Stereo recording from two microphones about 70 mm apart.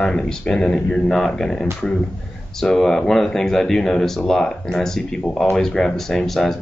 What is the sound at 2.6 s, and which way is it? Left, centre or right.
Speech, centre.